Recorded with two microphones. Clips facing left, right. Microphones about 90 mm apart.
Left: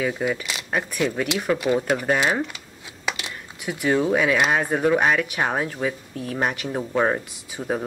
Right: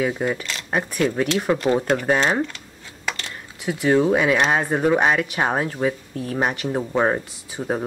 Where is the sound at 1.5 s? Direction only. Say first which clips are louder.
Even; 20° right (ahead or behind).